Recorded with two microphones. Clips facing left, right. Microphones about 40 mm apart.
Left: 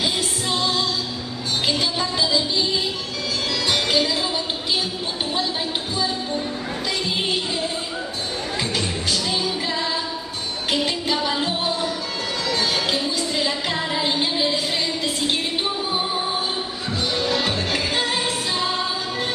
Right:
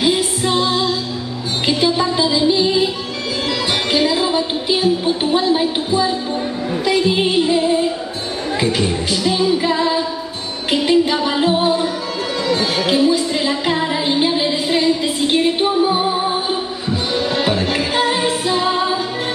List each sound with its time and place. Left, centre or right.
0.0 s music: centre
3.9 s a sound: centre
6.9 s music: centre